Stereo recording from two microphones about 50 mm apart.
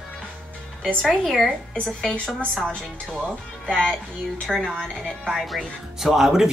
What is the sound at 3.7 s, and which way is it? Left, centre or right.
Speech, centre.